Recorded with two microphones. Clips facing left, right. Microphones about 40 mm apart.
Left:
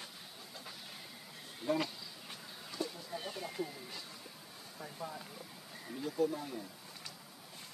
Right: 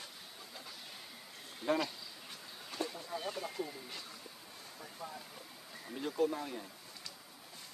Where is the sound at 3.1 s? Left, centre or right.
Centre.